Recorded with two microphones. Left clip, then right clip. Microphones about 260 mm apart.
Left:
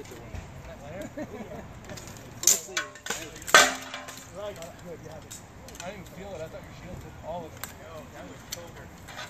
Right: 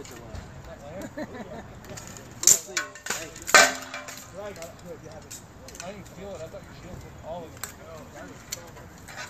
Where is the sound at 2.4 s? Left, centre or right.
Centre.